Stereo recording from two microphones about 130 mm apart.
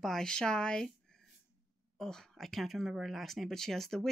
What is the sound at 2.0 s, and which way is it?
Speech, 5° left (ahead or behind).